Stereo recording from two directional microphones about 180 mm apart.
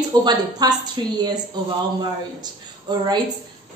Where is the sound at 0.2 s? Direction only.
20° right (ahead or behind).